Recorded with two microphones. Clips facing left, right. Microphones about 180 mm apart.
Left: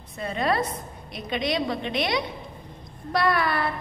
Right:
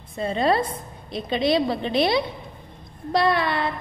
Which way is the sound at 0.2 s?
30° right (ahead or behind).